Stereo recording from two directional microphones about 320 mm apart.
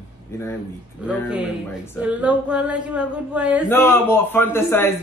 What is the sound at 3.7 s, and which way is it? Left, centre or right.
A man's voice, centre.